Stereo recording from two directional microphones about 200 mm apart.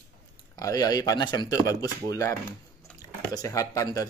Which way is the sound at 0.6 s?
20° left (ahead or behind).